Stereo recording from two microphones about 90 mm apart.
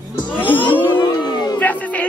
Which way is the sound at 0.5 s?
65° left (ahead or behind).